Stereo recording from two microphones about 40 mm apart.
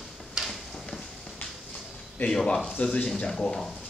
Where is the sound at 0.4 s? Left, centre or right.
Centre.